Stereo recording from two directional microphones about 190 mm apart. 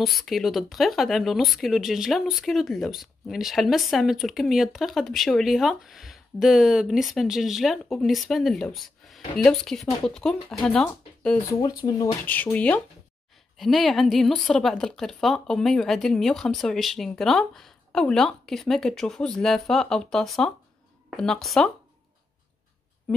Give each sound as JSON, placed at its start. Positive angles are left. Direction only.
{"t": 0.0, "sound": "speech", "side_deg": 0}
{"t": 11.6, "sound": "speech", "side_deg": 20}
{"t": 12.3, "sound": "speech", "side_deg": 10}